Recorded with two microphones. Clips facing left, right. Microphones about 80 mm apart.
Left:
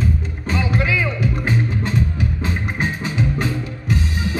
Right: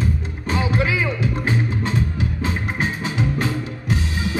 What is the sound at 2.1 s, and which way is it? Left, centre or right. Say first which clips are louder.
Music: even; left.